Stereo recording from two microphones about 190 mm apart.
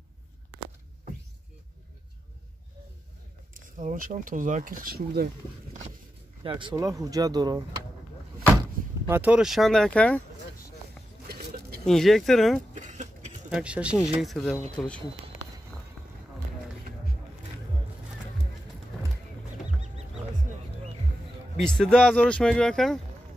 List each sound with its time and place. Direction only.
3.5 s speech: 45° right (ahead or behind)
6.4 s speech: 25° right (ahead or behind)
9.0 s speech: 10° right (ahead or behind); by 10.2 s 5° left (ahead or behind)
11.2 s a sound: 55° right (ahead or behind)
11.8 s speech: centre (ahead or behind)
12.7 s a sound: 40° right (ahead or behind)
13.5 s speech: 5° right (ahead or behind)
21.6 s speech: 5° left (ahead or behind)